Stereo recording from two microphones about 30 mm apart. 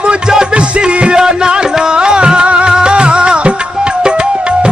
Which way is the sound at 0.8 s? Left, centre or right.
Right.